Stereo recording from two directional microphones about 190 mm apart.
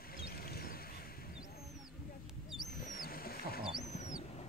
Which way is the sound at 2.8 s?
45° left (ahead or behind).